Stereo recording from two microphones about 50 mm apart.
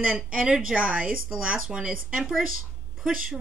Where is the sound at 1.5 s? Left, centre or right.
Centre.